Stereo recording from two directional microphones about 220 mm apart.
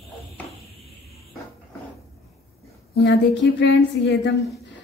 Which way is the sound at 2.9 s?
55° left (ahead or behind).